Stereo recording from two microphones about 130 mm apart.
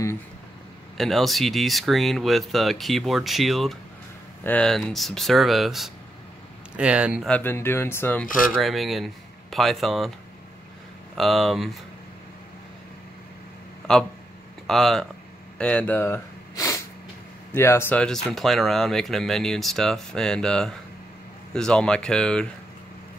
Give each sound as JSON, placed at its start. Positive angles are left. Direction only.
{"t": 0.9, "sound": "speech", "side_deg": 0}
{"t": 4.4, "sound": "speech", "side_deg": 10}
{"t": 7.2, "sound": "speech", "side_deg": 15}
{"t": 8.5, "sound": "speech", "side_deg": 0}
{"t": 11.1, "sound": "speech", "side_deg": 0}
{"t": 14.7, "sound": "speech", "side_deg": 5}
{"t": 15.5, "sound": "sniff", "side_deg": 10}
{"t": 17.6, "sound": "speech", "side_deg": 20}
{"t": 17.9, "sound": "speech", "side_deg": 5}